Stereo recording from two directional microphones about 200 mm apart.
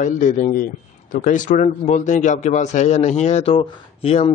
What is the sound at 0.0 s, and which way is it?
A man's voice, 40° left (ahead or behind).